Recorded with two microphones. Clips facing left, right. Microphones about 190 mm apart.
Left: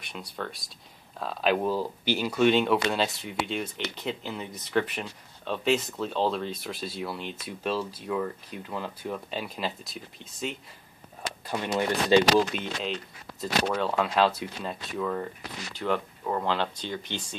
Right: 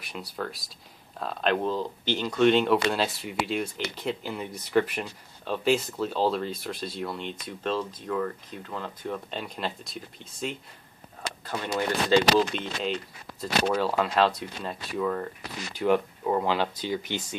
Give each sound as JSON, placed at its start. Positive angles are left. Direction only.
{"t": 0.0, "sound": "speech", "side_deg": 0}
{"t": 11.4, "sound": "speech", "side_deg": 15}
{"t": 12.8, "sound": "speech", "side_deg": 0}
{"t": 15.7, "sound": "speech", "side_deg": -10}